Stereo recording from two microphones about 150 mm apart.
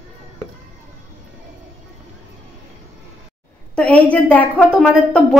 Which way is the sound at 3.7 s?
10° left (ahead or behind).